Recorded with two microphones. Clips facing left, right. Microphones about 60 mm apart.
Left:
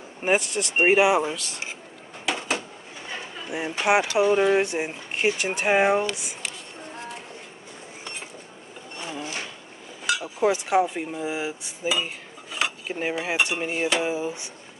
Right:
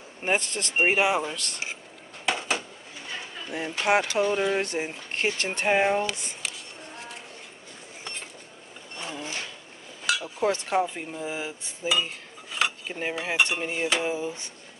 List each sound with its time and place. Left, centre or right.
0.2 s speech: centre
2.2 s a sound: centre
3.4 s speech: centre
8.0 s dishes: centre
8.9 s a sound: centre
10.2 s speech: centre
11.9 s cutlery: centre
14.0 s speech: centre